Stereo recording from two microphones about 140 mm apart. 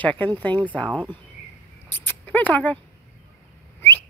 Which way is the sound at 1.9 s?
15° left (ahead or behind).